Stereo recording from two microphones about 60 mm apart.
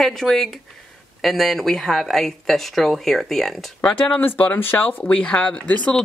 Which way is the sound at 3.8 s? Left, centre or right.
Left.